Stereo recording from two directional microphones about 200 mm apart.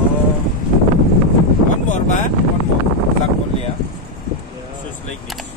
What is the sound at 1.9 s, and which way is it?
Wind noise, 35° left (ahead or behind).